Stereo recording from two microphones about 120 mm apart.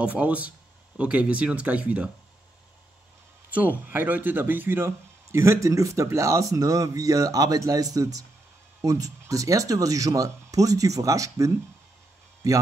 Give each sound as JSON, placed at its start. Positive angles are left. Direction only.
{"t": 0.0, "sound": "speech", "side_deg": -10}
{"t": 3.5, "sound": "speech", "side_deg": -15}